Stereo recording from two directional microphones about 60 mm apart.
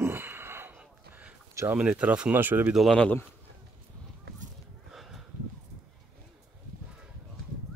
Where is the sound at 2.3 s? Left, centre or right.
Right.